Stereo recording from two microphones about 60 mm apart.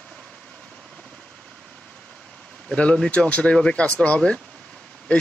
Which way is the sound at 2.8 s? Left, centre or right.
Centre.